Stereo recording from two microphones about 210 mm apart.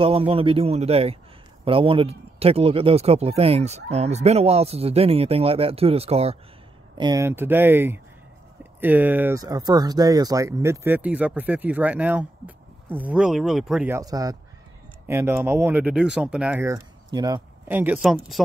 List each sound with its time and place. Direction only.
0.0 s speech: 25° right (ahead or behind)
7.0 s speech: 15° right (ahead or behind)
17.6 s speech: 5° right (ahead or behind)